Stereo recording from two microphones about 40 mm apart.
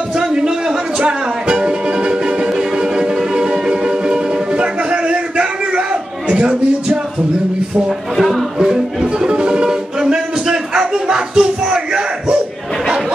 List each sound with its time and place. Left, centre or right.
0.2 s music: centre
8.2 s speech: centre
8.5 s music: centre